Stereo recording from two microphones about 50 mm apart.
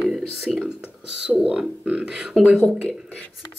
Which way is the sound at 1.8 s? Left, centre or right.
Right.